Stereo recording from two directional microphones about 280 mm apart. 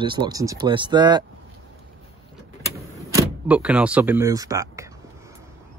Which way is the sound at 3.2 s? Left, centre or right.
Centre.